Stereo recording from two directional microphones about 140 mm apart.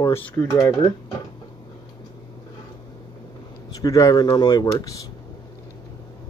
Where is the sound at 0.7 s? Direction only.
30° left (ahead or behind).